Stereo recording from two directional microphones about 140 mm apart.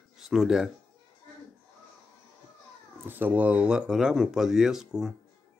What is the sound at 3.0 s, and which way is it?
Speech, 15° right (ahead or behind).